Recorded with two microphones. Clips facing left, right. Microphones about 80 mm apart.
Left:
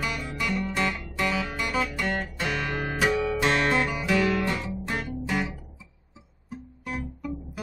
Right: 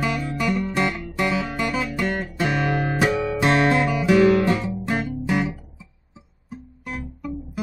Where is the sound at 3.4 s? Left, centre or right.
Centre.